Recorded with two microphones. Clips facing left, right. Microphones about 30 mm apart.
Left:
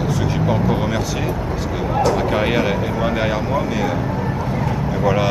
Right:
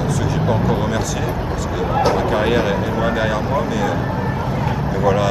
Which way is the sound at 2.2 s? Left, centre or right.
Centre.